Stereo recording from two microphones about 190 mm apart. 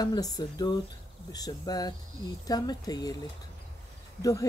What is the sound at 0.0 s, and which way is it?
Speech, 20° left (ahead or behind).